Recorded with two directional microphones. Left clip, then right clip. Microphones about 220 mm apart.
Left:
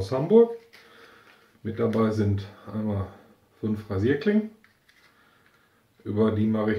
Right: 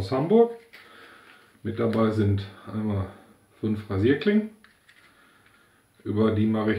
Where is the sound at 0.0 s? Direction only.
5° left (ahead or behind).